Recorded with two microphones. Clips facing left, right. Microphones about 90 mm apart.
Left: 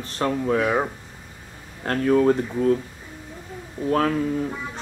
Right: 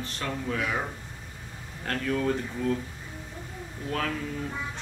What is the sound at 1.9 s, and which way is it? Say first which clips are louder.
Speech: left 9 dB; 40° left (ahead or behind).